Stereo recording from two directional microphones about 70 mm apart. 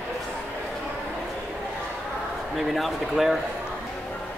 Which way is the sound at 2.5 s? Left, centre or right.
Centre.